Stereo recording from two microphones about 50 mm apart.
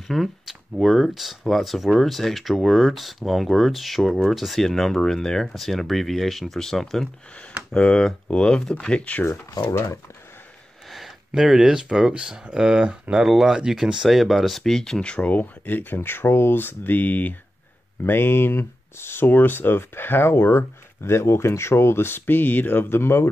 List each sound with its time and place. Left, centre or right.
0.1 s speech: centre
7.7 s speech: centre
10.9 s speech: centre
14.0 s speech: centre; by 17.4 s left
18.0 s speech: left